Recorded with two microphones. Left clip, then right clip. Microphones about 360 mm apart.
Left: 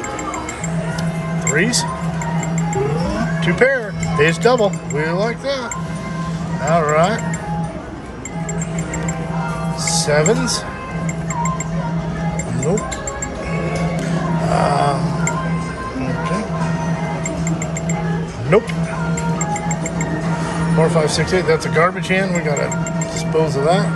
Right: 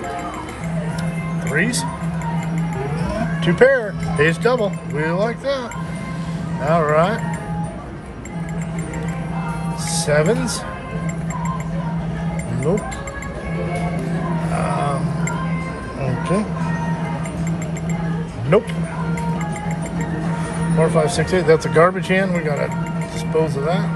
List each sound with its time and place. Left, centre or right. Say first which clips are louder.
1.5 s speech: left 3 dB; centre
3.3 s speech: right 2 dB; centre
6.6 s speech: left 1 dB; centre
9.8 s speech: left 2 dB; centre
14.5 s speech: left 7 dB; centre
18.5 s speech: left 2 dB; centre
20.8 s speech: left 1 dB; centre